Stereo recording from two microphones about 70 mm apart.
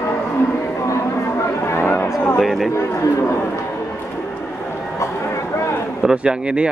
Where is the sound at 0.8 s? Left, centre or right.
Left.